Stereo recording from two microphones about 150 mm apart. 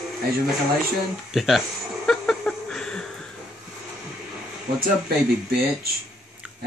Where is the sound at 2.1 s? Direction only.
5° left (ahead or behind).